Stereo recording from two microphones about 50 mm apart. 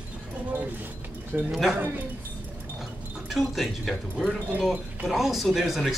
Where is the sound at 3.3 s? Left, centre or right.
Centre.